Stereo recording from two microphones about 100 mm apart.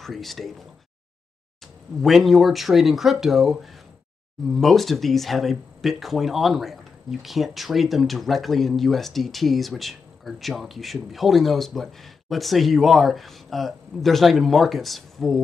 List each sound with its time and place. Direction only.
0.0 s speech: centre (ahead or behind)
2.0 s speech: centre (ahead or behind)
4.6 s speech: centre (ahead or behind)